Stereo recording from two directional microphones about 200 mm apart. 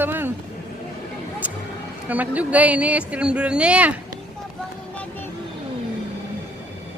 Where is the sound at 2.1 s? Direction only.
10° right (ahead or behind).